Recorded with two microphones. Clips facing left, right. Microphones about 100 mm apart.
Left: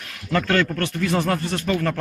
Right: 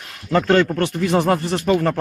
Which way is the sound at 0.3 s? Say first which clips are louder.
Right 5 dB; 25° right (ahead or behind).